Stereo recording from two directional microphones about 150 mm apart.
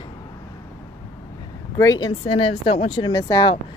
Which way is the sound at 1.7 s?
25° left (ahead or behind).